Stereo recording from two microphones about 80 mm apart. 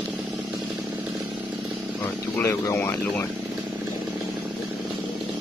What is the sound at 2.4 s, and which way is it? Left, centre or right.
Speech, left.